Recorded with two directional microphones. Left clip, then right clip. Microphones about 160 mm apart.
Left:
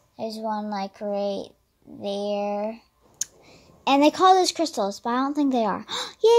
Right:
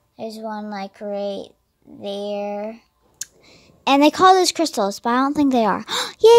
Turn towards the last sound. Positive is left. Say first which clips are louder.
# right 7 dB
turn(degrees=-40)  # may be behind; listen again after turning